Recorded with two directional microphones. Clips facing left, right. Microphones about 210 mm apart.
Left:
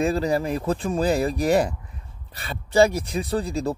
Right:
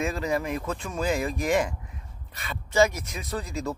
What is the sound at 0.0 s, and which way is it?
Speech, 35° left (ahead or behind).